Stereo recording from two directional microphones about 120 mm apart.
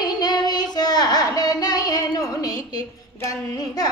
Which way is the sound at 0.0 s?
35° left (ahead or behind).